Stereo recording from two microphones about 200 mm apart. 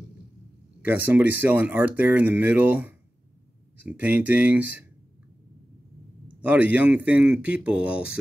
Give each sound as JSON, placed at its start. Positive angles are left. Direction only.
{"t": 0.8, "sound": "speech", "side_deg": -10}
{"t": 6.4, "sound": "speech", "side_deg": -5}